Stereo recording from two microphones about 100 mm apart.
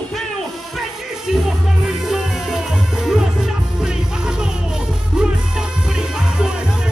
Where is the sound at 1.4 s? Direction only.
5° right (ahead or behind).